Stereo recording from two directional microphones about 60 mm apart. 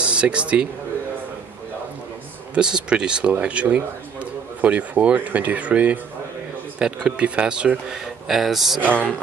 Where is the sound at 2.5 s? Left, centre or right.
Centre.